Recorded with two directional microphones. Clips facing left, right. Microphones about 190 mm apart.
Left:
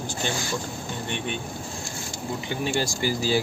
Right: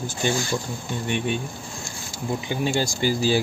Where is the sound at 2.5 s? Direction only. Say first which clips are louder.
Right 2 dB; 15° right (ahead or behind).